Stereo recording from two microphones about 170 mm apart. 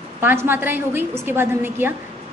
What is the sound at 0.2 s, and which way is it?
A woman's voice, 10° right (ahead or behind).